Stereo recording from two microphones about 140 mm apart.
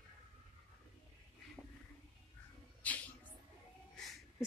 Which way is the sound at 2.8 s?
10° left (ahead or behind).